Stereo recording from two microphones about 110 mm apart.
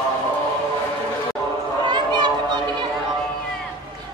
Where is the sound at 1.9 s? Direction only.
40° right (ahead or behind).